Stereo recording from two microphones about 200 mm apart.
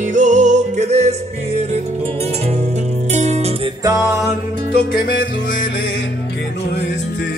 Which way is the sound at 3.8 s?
15° right (ahead or behind).